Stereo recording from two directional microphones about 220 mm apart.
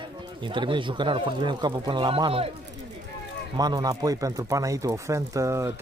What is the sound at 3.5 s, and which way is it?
Speech, 15° right (ahead or behind).